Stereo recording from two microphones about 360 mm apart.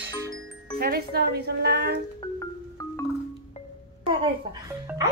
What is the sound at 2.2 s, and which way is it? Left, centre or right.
Marimba, centre.